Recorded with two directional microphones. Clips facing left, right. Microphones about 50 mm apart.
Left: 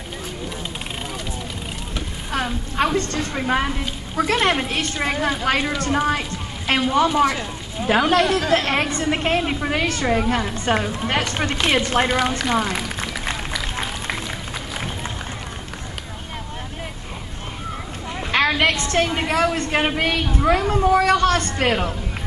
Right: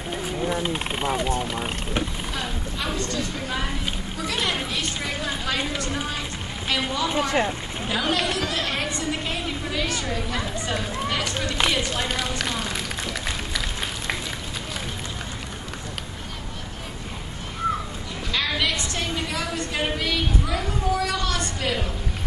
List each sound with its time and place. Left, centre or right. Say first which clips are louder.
0.5 s speech: right 5 dB; right
2.8 s a woman's voice: left 8 dB; left
8.1 s a woman's voice: left 7 dB; left
12.4 s a sound: left 7 dB; left
18.3 s a woman's voice: left 7 dB; left